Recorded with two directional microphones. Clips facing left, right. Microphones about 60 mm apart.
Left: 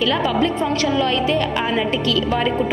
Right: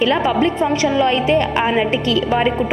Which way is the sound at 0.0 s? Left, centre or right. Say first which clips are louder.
Right 3 dB; right.